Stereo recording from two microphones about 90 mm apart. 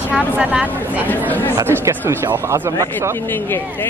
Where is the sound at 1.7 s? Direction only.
30° right (ahead or behind).